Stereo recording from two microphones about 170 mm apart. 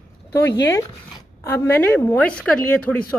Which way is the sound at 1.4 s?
15° left (ahead or behind).